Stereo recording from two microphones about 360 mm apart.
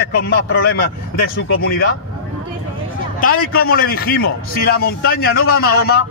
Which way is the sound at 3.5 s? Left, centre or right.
Left.